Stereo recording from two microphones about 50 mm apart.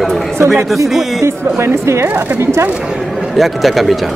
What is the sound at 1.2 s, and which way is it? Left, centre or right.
Speech, right.